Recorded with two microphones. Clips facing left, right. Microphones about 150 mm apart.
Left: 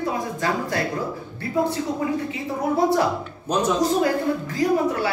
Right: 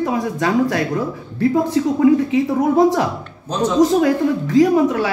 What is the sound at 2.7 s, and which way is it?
Speech, 90° right.